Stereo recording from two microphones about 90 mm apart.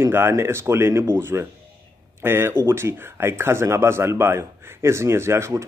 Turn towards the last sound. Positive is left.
turn(degrees=-30)  # may be behind; listen again after turning